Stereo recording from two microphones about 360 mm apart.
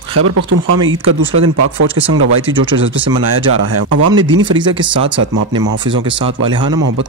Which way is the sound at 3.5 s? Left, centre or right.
Right.